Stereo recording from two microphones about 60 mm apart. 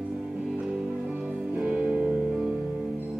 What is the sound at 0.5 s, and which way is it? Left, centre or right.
Music, centre.